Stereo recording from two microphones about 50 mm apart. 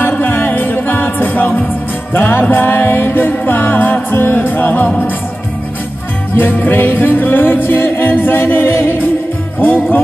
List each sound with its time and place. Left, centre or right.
0.2 s music: left
6.3 s music: left